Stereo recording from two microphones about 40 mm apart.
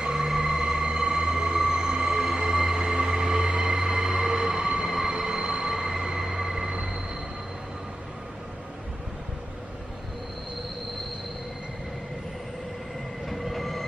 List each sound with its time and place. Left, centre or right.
0.0 s a sound: centre
2.3 s train: centre
13.3 s train: centre